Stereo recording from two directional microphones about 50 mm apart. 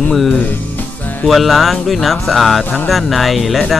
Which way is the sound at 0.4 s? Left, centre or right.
Left.